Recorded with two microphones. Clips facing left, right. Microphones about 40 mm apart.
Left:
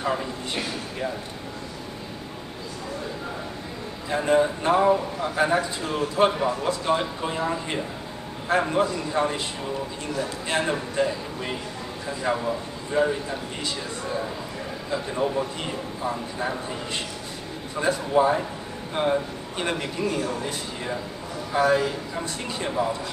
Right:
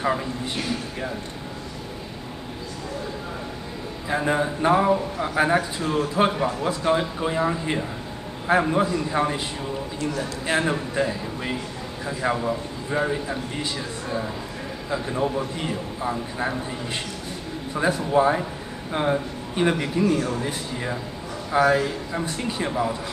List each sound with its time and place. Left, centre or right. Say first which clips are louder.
0.0 s a man's voice: right 2 dB; centre
4.1 s a man's voice: left 2 dB; centre
5.2 s a man's voice: right 4 dB; centre
5.6 s a man's voice: right 2 dB; centre
10.4 s a man's voice: right 4 dB; centre
14.9 s a man's voice: right 1 dB; centre
18.1 s a man's voice: right 1 dB; centre
18.9 s a man's voice: even; centre
21.5 s a man's voice: right 2 dB; centre
22.1 s a man's voice: right 3 dB; centre
22.7 s a man's voice: left 1 dB; centre